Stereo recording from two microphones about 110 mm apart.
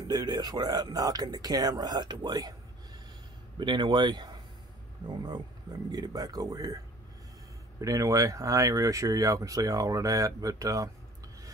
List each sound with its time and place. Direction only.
0.1 s speech: 35° right (ahead or behind)
3.5 s speech: 45° right (ahead or behind)
7.8 s speech: 30° right (ahead or behind)